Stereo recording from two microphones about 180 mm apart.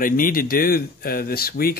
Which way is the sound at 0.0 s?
50° left (ahead or behind).